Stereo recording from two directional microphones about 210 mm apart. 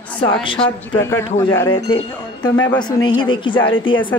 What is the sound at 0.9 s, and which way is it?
Speech, 10° left (ahead or behind).